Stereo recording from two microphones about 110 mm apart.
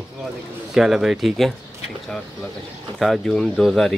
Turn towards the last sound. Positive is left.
turn(degrees=0)  # may be behind; listen again after turning